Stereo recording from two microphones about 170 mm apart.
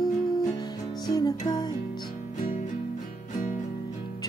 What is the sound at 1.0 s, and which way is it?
Music, 20° left (ahead or behind).